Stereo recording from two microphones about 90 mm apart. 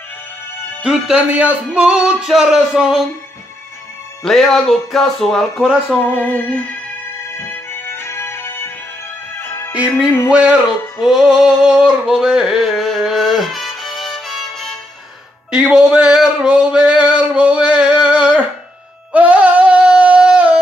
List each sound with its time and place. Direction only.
0.8 s speech: 10° right (ahead or behind)
4.2 s music: 5° left (ahead or behind)
5.9 s music: 20° left (ahead or behind)
10.3 s a sound: 10° right (ahead or behind)
15.5 s speech: 10° right (ahead or behind)
17.2 s a sound: 10° right (ahead or behind)